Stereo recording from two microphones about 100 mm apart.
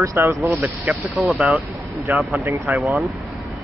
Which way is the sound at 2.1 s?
Centre (ahead or behind).